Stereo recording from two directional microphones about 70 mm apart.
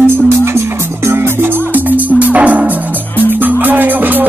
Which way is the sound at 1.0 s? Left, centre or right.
Right.